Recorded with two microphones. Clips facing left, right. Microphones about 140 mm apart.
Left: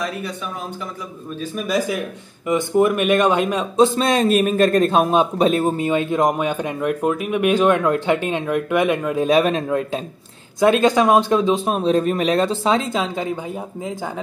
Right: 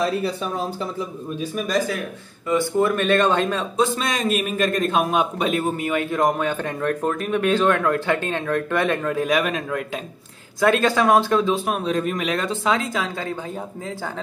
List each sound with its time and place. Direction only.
0.0 s speech: 30° right (ahead or behind)
2.4 s speech: 15° left (ahead or behind)
3.8 s a man's voice: 30° left (ahead or behind)
5.9 s speech: 20° left (ahead or behind)
9.2 s speech: 30° left (ahead or behind)